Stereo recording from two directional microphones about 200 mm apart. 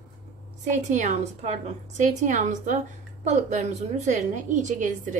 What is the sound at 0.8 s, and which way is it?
A woman's voice, 35° right (ahead or behind).